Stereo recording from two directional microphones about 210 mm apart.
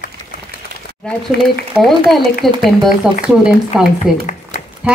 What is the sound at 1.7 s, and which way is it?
A woman's voice, centre (ahead or behind).